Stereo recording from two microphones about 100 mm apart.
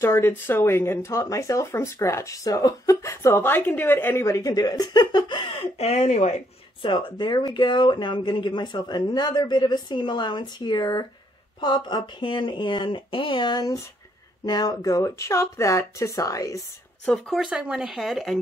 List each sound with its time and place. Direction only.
0.0 s speech: 25° left (ahead or behind); by 6.3 s 90° left
6.8 s speech: 55° left (ahead or behind); by 16.6 s 35° left (ahead or behind)
17.0 s speech: 5° left (ahead or behind)
17.4 s speech: 10° right (ahead or behind)